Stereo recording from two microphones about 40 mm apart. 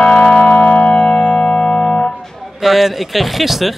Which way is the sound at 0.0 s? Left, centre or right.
Left.